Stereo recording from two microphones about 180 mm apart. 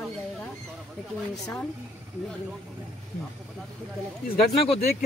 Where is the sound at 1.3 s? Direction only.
Centre (ahead or behind).